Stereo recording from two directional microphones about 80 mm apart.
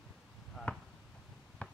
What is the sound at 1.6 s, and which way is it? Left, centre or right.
Basketball bounce, centre.